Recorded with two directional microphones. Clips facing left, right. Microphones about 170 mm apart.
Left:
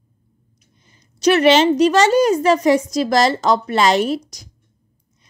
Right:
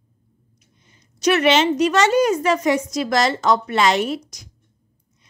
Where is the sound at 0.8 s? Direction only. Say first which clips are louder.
Left 5 dB; 35° left (ahead or behind).